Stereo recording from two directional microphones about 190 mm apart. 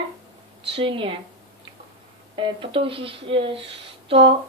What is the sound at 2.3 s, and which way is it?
A woman's voice, 25° right (ahead or behind).